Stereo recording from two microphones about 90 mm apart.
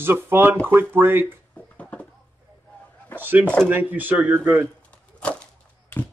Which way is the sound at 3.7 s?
20° right (ahead or behind).